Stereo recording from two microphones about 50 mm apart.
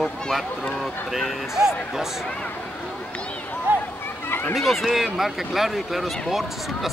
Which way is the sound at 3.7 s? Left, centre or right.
Right.